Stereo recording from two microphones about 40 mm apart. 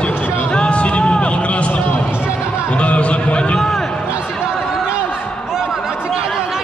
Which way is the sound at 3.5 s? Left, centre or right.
Centre.